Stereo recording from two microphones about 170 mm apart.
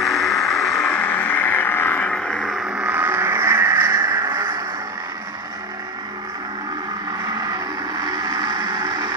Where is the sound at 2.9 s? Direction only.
10° right (ahead or behind).